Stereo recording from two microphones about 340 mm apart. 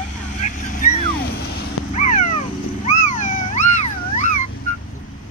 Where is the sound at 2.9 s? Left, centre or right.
Left.